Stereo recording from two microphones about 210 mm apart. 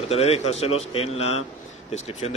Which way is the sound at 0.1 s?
30° left (ahead or behind).